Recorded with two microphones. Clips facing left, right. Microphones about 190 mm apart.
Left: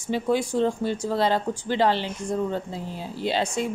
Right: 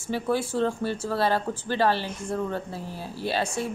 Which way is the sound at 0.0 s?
15° left (ahead or behind).